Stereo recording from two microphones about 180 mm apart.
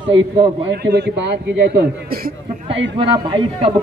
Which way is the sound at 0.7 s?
65° right (ahead or behind).